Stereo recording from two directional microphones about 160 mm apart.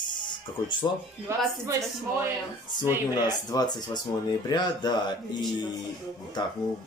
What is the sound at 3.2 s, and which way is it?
Speech, 25° left (ahead or behind).